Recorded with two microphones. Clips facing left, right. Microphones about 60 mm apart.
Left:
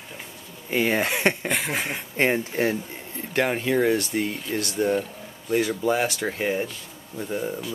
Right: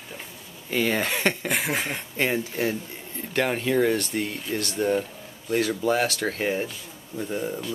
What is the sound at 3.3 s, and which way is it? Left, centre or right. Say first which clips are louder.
Speech: left 1 dB; centre.